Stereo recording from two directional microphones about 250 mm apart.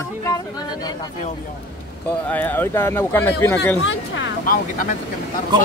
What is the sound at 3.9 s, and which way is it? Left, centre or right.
Speech, left.